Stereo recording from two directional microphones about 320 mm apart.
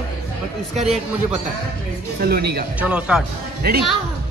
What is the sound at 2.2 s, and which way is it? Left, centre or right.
Speech, right.